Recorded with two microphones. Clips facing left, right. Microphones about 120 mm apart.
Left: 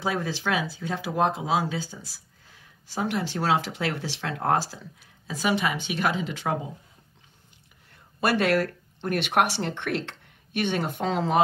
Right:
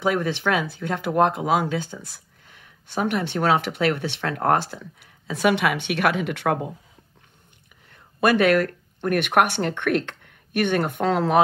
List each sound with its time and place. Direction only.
0.1 s speech: 60° right (ahead or behind)
8.2 s speech: 55° right (ahead or behind)